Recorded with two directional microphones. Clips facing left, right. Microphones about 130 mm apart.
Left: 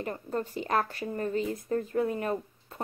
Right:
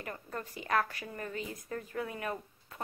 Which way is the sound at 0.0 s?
30° left (ahead or behind).